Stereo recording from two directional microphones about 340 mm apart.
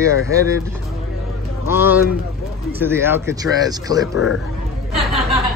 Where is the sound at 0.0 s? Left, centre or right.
Centre.